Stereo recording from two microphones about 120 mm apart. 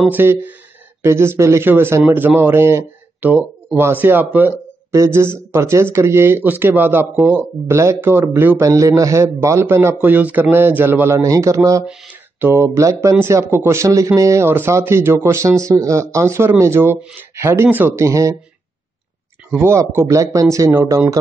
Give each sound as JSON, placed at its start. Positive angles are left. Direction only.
{"t": 0.1, "sound": "a man's voice", "side_deg": -15}
{"t": 11.8, "sound": "speech", "side_deg": -5}
{"t": 12.4, "sound": "a man's voice", "side_deg": -20}
{"t": 19.6, "sound": "a man's voice", "side_deg": -20}